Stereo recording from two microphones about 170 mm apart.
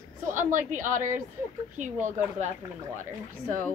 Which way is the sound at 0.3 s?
50° right (ahead or behind).